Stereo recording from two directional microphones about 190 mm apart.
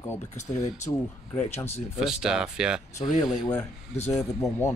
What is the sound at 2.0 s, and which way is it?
Speech, 5° right (ahead or behind).